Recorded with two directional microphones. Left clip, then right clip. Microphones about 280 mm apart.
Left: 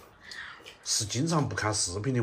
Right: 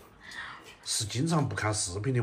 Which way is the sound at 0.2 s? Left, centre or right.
Centre.